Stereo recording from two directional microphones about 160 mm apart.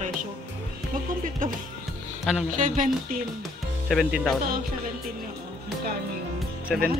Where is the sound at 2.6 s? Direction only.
55° right (ahead or behind).